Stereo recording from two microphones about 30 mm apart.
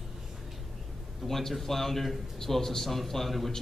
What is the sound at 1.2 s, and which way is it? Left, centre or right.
Speech, centre.